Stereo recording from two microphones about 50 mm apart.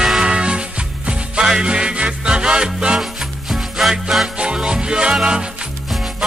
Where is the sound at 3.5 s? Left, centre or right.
Centre.